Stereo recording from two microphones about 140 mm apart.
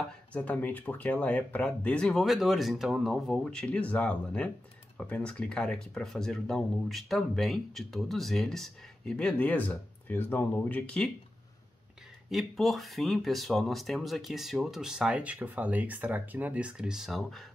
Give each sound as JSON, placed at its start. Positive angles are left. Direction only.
{"t": 0.3, "sound": "speech", "side_deg": 10}
{"t": 12.3, "sound": "speech", "side_deg": 0}